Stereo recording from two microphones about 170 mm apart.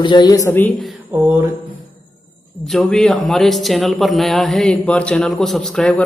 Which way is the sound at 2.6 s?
5° left (ahead or behind).